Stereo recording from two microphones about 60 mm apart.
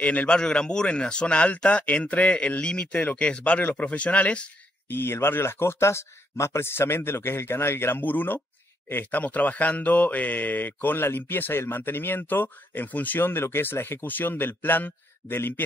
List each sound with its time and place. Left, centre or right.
0.0 s speech: left
4.8 s speech: left